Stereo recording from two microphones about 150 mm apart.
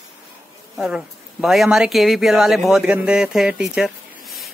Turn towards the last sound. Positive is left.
turn(degrees=0)  # may be behind; listen again after turning